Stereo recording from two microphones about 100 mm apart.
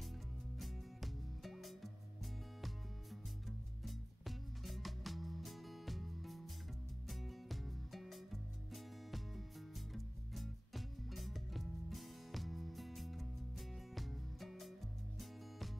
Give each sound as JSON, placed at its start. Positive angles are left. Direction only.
{"t": 0.6, "sound": "music", "side_deg": 0}